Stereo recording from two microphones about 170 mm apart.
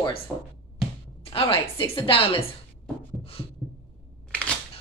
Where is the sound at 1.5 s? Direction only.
35° left (ahead or behind).